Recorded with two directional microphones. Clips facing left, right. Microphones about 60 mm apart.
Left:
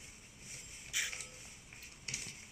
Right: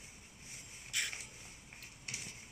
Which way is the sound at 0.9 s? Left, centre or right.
Centre.